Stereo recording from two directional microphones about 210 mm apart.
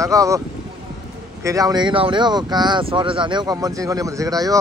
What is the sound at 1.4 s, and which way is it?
Speech, 15° right (ahead or behind).